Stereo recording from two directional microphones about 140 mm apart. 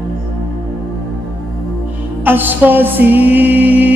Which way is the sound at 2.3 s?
15° right (ahead or behind).